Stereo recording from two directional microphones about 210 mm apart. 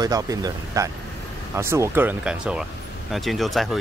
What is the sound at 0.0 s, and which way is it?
Speech, 15° right (ahead or behind).